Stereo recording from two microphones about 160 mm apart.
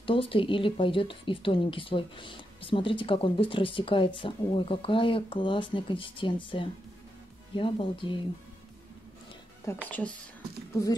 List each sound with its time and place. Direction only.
0.0 s speech: 35° left (ahead or behind)
9.8 s speech: 10° left (ahead or behind)